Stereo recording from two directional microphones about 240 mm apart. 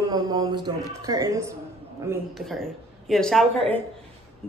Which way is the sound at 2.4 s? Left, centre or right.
Centre.